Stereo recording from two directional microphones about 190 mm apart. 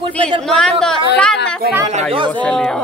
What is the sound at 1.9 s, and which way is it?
Speech, 30° right (ahead or behind).